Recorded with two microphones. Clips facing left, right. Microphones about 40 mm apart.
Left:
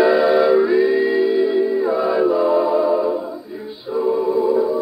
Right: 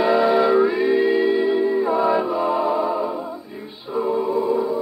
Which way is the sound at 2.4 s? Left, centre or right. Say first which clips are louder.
Left 4 dB; centre.